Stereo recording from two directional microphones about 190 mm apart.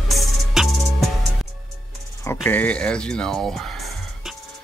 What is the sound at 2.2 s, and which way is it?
Speech, 10° left (ahead or behind).